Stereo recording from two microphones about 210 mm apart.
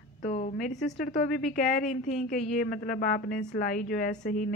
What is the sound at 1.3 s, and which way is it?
A woman's voice, 40° left (ahead or behind).